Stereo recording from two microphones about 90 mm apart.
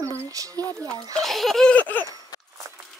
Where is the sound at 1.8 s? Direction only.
20° left (ahead or behind).